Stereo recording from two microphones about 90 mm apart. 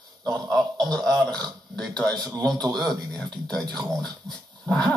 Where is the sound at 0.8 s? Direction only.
5° left (ahead or behind).